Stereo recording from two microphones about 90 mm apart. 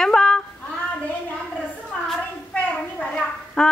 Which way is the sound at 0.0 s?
5° left (ahead or behind).